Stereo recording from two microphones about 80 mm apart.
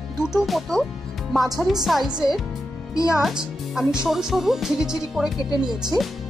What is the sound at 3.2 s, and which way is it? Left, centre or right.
Speech, centre.